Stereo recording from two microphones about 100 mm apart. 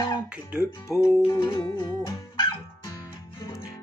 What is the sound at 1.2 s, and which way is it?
Music, 45° left (ahead or behind).